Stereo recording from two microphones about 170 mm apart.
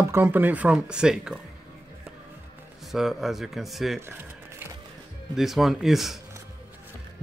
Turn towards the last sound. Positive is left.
turn(degrees=0)  # may be behind; listen again after turning